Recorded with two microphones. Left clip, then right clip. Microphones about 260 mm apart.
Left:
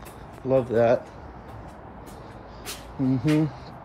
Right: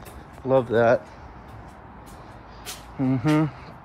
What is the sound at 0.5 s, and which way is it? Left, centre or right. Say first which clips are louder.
Speech: right 1 dB; right.